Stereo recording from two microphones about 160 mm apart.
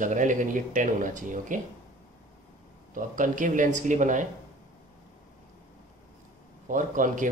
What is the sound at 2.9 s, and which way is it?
A man's voice, 55° right (ahead or behind).